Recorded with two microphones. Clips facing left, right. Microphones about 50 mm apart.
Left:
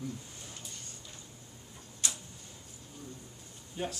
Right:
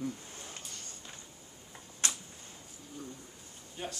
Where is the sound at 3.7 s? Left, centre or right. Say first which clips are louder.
Left 4 dB; centre.